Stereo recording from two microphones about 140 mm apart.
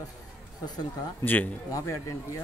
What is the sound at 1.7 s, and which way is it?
Speech, 25° left (ahead or behind).